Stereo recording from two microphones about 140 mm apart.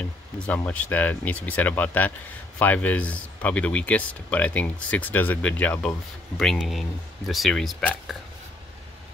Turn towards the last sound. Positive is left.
turn(degrees=5)  # may be behind; listen again after turning